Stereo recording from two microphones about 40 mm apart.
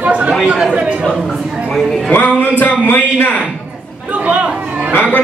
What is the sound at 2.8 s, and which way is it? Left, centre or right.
Speech, left.